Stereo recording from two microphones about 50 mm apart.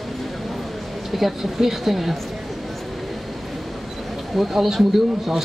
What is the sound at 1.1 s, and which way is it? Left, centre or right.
Speech, centre.